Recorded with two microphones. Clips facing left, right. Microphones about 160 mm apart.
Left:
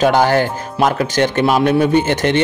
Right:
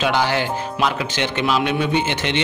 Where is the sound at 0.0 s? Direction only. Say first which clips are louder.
Left 7 dB; 45° left (ahead or behind).